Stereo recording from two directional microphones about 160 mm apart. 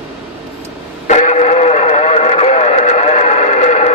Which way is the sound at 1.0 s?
50° left (ahead or behind).